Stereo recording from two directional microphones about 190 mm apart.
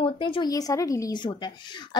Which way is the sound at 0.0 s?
25° left (ahead or behind).